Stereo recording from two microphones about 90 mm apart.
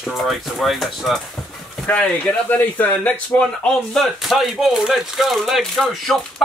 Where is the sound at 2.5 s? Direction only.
20° left (ahead or behind).